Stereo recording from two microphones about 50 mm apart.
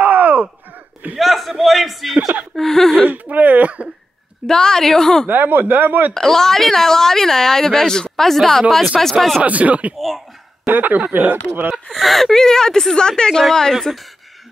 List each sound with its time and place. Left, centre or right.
0.0 s a sound: right
1.1 s a sound: centre
1.5 s a man's voice: centre
3.1 s speech: right
4.5 s a woman's voice: centre
5.3 s speech: right
6.1 s a woman's voice: centre
9.4 s speech: right
9.9 s a sound: centre
10.7 s speech: right
11.9 s a woman's voice: centre